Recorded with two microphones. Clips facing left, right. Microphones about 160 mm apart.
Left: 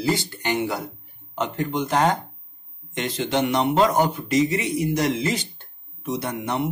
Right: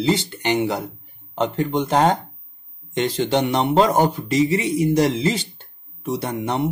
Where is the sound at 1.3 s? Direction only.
30° right (ahead or behind).